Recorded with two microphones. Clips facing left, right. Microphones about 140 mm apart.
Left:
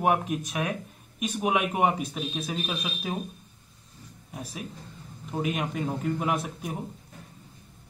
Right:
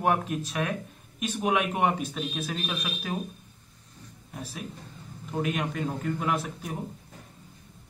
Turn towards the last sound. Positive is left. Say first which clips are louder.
# left 1 dB
turn(degrees=15)  # may be behind; listen again after turning